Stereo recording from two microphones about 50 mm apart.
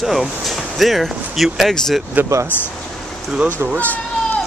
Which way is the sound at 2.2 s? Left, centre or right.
Right.